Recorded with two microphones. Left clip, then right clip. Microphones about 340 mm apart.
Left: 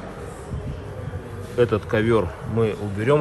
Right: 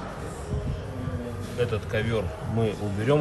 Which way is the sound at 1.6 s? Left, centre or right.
Centre.